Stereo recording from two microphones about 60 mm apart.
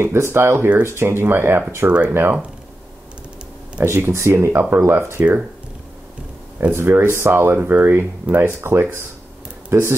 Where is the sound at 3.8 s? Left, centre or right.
Right.